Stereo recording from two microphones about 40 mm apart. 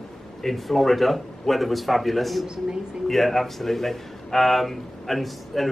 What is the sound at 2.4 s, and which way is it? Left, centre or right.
Speech, centre.